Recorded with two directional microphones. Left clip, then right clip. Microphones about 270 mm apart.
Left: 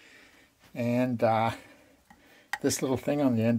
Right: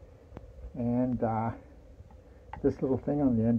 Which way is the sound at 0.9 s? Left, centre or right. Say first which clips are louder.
Left 5 dB; centre.